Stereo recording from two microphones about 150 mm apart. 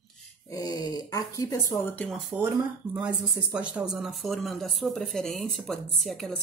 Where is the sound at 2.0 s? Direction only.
5° right (ahead or behind).